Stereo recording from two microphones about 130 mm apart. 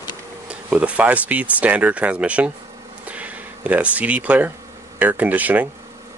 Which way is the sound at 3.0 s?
10° right (ahead or behind).